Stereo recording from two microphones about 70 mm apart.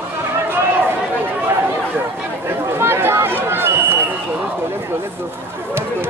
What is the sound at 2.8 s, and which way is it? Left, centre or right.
Run, right.